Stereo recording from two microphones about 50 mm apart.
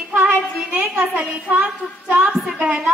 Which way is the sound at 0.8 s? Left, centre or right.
Right.